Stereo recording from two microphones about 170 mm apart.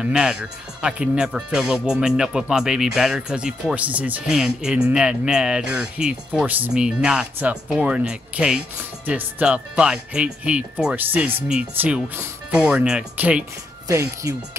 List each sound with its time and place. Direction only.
0.0 s speech: 5° right (ahead or behind)
13.8 s speech: 15° right (ahead or behind)